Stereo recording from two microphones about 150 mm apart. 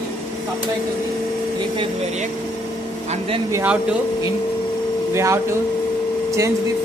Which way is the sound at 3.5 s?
20° right (ahead or behind).